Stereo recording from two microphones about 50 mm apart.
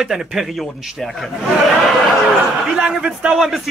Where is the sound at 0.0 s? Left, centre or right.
Centre.